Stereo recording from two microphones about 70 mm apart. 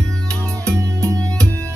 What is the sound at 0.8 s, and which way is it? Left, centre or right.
Music, right.